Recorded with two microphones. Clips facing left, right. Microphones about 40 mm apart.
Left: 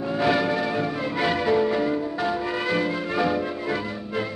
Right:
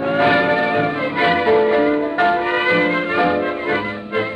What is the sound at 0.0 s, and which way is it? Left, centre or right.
Music, right.